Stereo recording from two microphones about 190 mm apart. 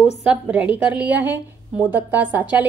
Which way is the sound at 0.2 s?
5° right (ahead or behind).